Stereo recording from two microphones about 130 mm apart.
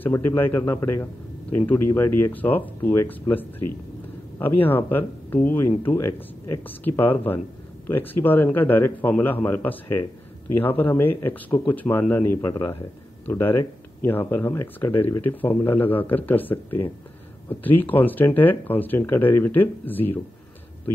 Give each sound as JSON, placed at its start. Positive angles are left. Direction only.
{"t": 0.0, "sound": "a man's voice", "side_deg": 15}